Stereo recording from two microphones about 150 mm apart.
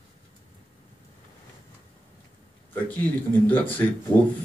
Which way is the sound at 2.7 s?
10° left (ahead or behind).